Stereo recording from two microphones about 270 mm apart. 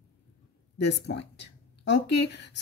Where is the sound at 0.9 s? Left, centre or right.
Left.